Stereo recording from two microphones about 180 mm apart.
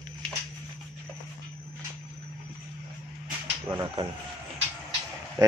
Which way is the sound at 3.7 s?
25° right (ahead or behind).